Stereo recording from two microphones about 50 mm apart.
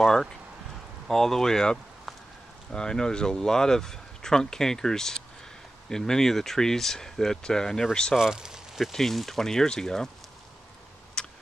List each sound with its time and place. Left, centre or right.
0.0 s speech: centre
8.2 s speech: centre
8.9 s speech: centre
11.2 s a sound: centre